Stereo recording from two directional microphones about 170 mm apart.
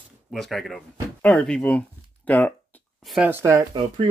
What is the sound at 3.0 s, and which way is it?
Speech, 5° right (ahead or behind).